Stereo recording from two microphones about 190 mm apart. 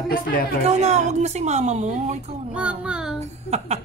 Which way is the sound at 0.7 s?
35° right (ahead or behind).